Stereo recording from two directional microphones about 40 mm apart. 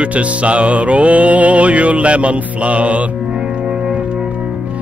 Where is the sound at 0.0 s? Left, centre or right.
Right.